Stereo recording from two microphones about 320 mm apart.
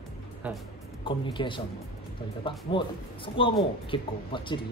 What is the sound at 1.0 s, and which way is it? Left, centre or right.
Speech, centre.